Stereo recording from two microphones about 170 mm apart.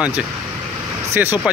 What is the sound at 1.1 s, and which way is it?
Speech, 10° right (ahead or behind).